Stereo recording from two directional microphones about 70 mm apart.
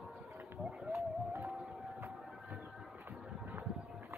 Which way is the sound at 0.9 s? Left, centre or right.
Right.